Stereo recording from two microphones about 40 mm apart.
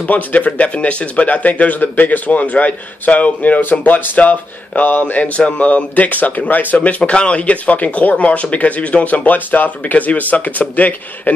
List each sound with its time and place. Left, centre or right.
0.0 s speech: left
0.5 s speech: left
7.0 s speech: left